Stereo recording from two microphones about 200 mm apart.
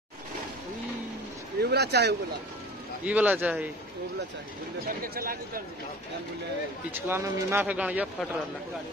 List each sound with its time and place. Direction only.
1.6 s speech: 55° right (ahead or behind)
3.1 s speech: 5° right (ahead or behind)
4.8 s a man's voice: 45° right (ahead or behind)
6.9 s speech: 10° right (ahead or behind)